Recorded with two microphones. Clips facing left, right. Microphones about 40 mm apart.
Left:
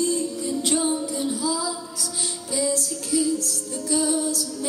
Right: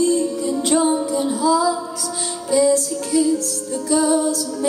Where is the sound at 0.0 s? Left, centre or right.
Centre.